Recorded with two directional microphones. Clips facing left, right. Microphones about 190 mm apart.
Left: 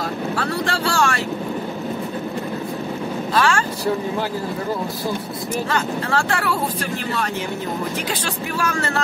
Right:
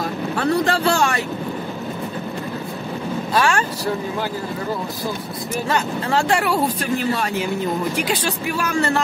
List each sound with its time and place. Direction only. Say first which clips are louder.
0.4 s speech: right 8 dB; 20° right (ahead or behind)
3.3 s speech: even; 15° right (ahead or behind)
5.7 s speech: right 3 dB; 15° right (ahead or behind)
8.5 s speech: right 2 dB; 15° right (ahead or behind)